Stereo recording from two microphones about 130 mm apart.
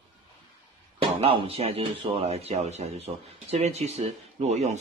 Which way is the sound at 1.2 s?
50° right (ahead or behind).